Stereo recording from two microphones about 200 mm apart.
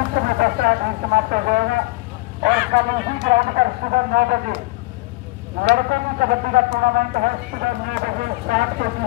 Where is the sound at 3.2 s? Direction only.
35° right (ahead or behind).